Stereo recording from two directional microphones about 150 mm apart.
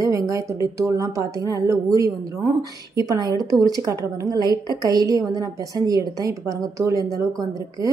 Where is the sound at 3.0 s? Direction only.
25° right (ahead or behind).